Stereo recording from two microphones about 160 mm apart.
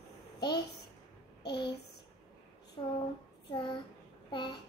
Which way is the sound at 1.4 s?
90° left.